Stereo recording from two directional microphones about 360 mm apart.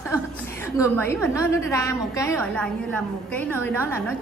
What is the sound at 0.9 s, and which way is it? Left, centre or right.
A woman's voice, centre.